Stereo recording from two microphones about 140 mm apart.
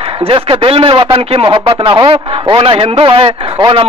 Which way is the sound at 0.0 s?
40° right (ahead or behind).